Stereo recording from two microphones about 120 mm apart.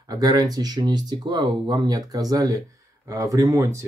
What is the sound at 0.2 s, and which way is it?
Speech, 30° right (ahead or behind).